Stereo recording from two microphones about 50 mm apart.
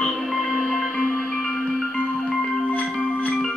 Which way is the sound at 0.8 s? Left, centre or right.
Centre.